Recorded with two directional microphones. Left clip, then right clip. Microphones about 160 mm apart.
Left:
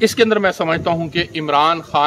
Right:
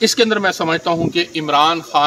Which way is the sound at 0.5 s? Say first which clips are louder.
Even; 35° left (ahead or behind).